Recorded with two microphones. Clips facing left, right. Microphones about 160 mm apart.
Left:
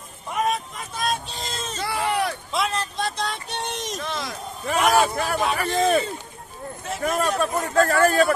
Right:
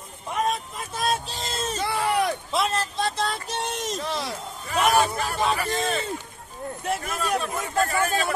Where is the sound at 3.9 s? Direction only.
35° right (ahead or behind).